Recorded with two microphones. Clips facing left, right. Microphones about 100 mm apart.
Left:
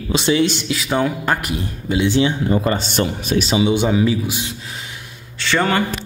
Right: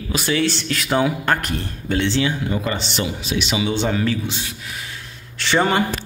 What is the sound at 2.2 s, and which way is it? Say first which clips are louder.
Speech: left 4 dB; 35° left (ahead or behind).